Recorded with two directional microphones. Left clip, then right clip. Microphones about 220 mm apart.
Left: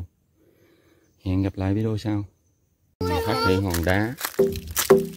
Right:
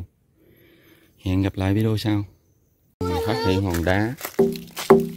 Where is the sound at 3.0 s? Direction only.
50° left (ahead or behind).